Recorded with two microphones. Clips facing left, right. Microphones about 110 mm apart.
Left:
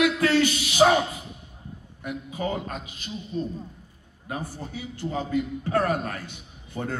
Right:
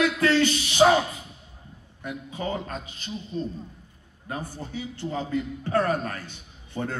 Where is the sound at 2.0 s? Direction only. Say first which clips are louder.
Left 2 dB; 35° right (ahead or behind).